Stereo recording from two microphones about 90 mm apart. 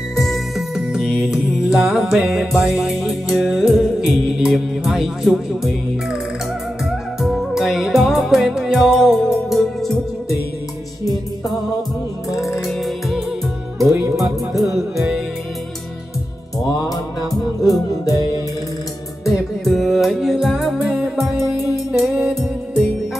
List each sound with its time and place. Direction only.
0.2 s music: centre (ahead or behind)
6.9 s music: centre (ahead or behind)
12.3 s music: 35° left (ahead or behind)
12.5 s music: centre (ahead or behind)
14.5 s music: centre (ahead or behind)
17.6 s music: 40° left (ahead or behind)
19.6 s music: centre (ahead or behind)